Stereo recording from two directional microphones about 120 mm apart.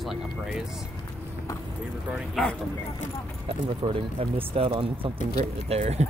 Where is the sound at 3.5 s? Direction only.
50° right (ahead or behind).